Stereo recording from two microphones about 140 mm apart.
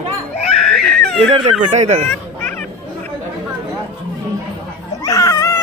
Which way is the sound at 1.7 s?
55° right (ahead or behind).